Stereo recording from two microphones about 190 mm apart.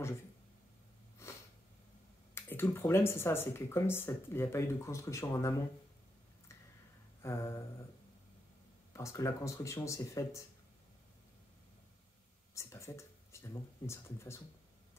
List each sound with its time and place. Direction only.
2.3 s speech: 10° left (ahead or behind)
7.2 s a sound: 15° left (ahead or behind)
8.9 s speech: 15° left (ahead or behind)
12.5 s speech: 15° left (ahead or behind)